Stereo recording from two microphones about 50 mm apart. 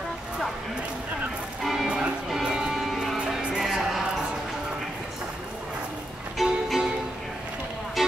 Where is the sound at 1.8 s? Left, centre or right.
Centre.